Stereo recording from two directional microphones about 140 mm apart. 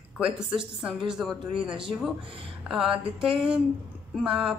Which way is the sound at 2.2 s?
40° right (ahead or behind).